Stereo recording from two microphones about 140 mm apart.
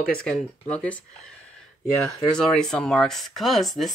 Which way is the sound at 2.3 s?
5° left (ahead or behind).